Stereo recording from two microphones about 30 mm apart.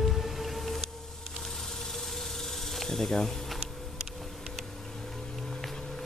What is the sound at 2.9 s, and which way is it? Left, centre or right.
Speech, centre.